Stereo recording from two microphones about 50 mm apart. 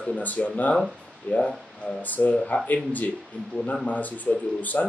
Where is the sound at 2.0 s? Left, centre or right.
Left.